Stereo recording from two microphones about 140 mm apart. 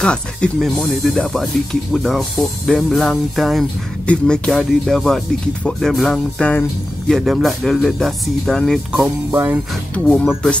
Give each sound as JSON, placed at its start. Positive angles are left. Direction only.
{"t": 0.0, "sound": "speech", "side_deg": 5}
{"t": 9.0, "sound": "music", "side_deg": -15}
{"t": 9.9, "sound": "speech", "side_deg": 5}